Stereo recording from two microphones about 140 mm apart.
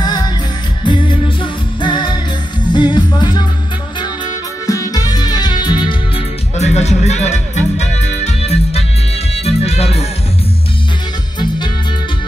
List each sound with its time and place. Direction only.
0.0 s music: 30° left (ahead or behind)
4.6 s music: 25° left (ahead or behind)
6.6 s music: 55° left (ahead or behind)